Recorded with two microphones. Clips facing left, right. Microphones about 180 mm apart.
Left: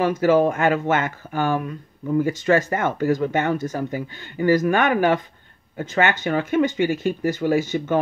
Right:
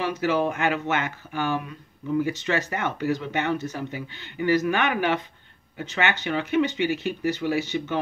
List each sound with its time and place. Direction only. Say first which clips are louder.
0.0 s speech: left 7 dB; 50° left (ahead or behind)